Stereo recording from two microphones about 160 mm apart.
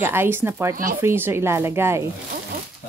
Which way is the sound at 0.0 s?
15° right (ahead or behind).